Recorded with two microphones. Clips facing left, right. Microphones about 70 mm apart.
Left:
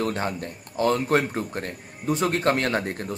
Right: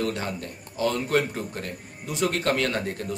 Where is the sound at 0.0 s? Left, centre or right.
Left.